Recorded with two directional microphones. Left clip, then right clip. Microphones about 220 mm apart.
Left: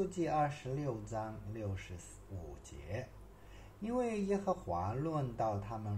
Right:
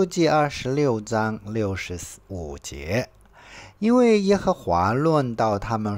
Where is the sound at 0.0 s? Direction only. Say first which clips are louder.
Right 15 dB; 45° right (ahead or behind).